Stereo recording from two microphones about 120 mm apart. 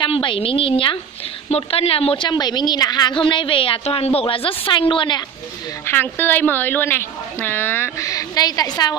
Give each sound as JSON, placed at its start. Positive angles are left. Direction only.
{"t": 0.0, "sound": "a woman's voice", "side_deg": 45}
{"t": 2.2, "sound": "a woman's voice", "side_deg": 35}
{"t": 5.9, "sound": "a woman's voice", "side_deg": 15}